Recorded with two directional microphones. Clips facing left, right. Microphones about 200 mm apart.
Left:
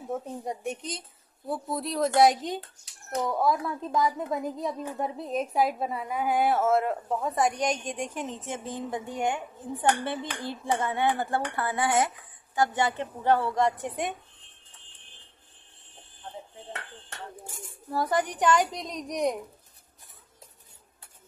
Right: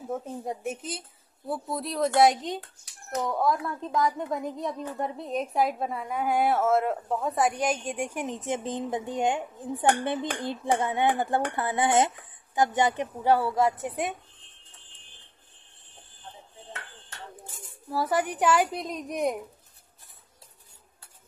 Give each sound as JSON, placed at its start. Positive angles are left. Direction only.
{"t": 0.1, "sound": "speech", "side_deg": 0}
{"t": 17.9, "sound": "speech", "side_deg": -5}